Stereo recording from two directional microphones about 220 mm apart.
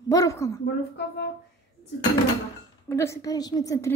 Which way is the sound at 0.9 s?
50° left (ahead or behind).